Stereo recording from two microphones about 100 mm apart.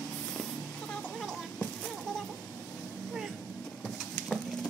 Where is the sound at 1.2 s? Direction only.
10° left (ahead or behind).